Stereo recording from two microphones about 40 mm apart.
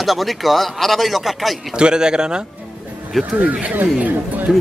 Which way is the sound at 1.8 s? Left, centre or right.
Centre.